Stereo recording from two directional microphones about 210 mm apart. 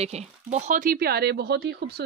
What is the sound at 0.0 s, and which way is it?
Speech, 35° right (ahead or behind).